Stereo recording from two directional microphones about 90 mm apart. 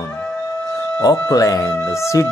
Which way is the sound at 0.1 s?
15° left (ahead or behind).